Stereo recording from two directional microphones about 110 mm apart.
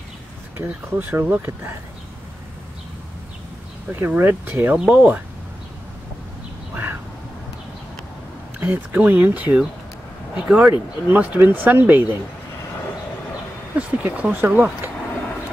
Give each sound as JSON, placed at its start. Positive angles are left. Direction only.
{"t": 0.6, "sound": "speech", "side_deg": -20}
{"t": 4.1, "sound": "speech", "side_deg": -15}
{"t": 6.7, "sound": "duck", "side_deg": -20}
{"t": 8.5, "sound": "speech", "side_deg": -15}
{"t": 13.7, "sound": "speech", "side_deg": -10}